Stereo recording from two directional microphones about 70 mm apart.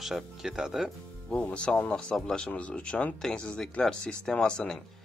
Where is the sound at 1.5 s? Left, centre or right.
Centre.